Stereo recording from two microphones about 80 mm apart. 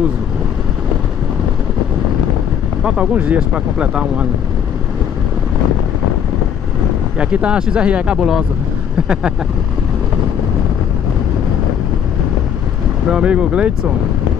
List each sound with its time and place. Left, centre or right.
2.8 s speech: centre
7.2 s speech: centre
13.1 s speech: centre